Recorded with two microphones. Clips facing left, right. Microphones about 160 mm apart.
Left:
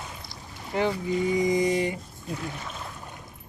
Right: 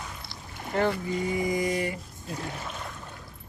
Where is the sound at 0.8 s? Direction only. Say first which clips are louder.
Left 1 dB; 15° left (ahead or behind).